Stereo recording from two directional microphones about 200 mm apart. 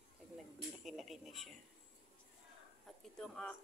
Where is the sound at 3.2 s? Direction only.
5° left (ahead or behind).